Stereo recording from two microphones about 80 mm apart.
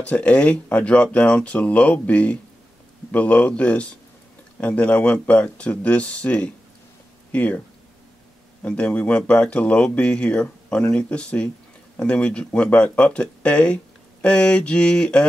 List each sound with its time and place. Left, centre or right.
0.0 s speech: centre
8.6 s speech: centre